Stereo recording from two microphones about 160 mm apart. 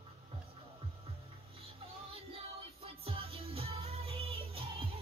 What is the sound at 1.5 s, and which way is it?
Music, 35° right (ahead or behind).